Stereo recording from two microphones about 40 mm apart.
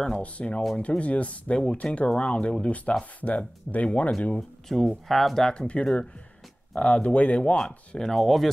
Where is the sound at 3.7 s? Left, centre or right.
Centre.